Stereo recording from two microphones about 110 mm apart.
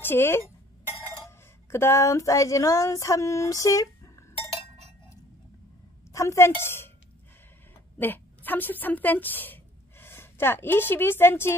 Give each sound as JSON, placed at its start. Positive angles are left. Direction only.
{"t": 0.0, "sound": "speech", "side_deg": 20}
{"t": 1.7, "sound": "female singing", "side_deg": 25}
{"t": 6.1, "sound": "a woman's voice", "side_deg": 25}
{"t": 8.0, "sound": "a woman's voice", "side_deg": 15}